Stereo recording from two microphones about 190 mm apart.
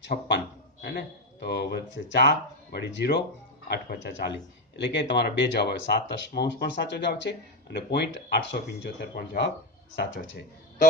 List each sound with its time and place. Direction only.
0.1 s a man's voice: 40° left (ahead or behind)
0.8 s speech: 60° left (ahead or behind)
9.9 s speech: 75° left (ahead or behind)